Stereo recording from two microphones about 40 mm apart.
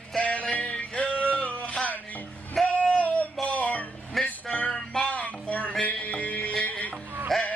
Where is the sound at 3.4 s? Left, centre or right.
Left.